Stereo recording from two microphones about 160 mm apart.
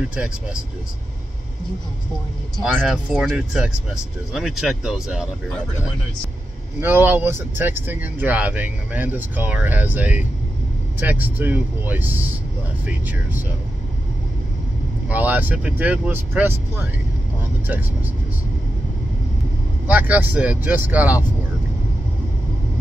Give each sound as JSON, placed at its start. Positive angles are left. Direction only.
{"t": 2.6, "sound": "speech", "side_deg": -5}
{"t": 6.8, "sound": "speech", "side_deg": -15}
{"t": 15.0, "sound": "speech", "side_deg": -10}
{"t": 19.9, "sound": "speech", "side_deg": -10}